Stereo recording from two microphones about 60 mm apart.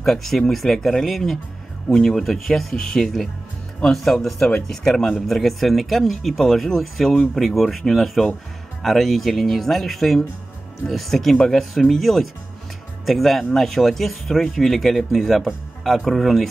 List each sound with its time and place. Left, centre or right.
0.0 s speech: centre